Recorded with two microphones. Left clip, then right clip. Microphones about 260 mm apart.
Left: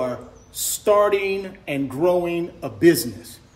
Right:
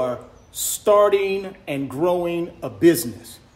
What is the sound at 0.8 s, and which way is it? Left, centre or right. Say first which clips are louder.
A man's voice: right 2 dB; centre.